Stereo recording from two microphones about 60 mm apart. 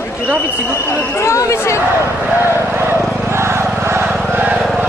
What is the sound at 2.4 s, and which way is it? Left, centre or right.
Vehicle, right.